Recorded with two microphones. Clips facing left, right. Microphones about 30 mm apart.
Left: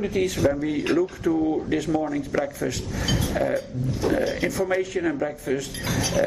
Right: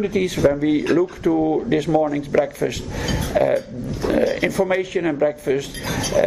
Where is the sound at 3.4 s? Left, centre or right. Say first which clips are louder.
Right 6 dB; right.